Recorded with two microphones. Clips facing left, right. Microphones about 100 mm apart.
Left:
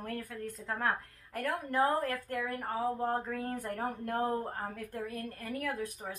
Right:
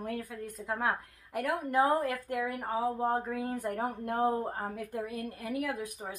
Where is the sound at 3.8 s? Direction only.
15° right (ahead or behind).